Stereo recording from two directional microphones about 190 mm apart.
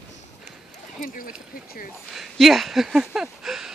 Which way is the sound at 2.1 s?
Centre (ahead or behind).